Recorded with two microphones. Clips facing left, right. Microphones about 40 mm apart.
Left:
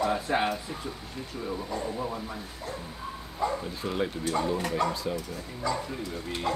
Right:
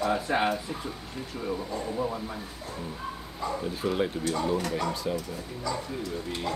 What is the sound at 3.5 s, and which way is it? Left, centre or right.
Speech, centre.